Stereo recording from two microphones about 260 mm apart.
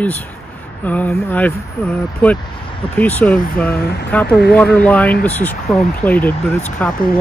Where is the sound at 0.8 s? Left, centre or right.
Centre.